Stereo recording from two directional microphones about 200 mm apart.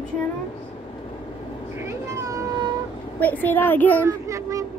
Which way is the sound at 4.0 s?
15° right (ahead or behind).